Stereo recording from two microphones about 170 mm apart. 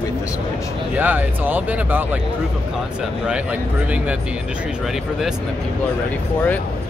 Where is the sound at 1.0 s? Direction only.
10° right (ahead or behind).